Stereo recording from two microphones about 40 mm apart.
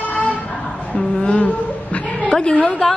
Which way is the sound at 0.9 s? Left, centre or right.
Left.